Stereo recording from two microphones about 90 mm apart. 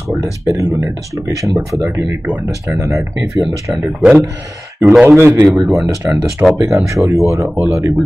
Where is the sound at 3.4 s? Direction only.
Centre (ahead or behind).